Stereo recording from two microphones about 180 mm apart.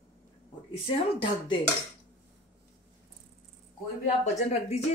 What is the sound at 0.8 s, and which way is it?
Speech, 25° left (ahead or behind).